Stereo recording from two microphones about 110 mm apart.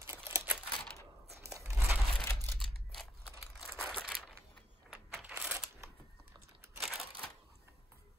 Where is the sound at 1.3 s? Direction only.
25° right (ahead or behind).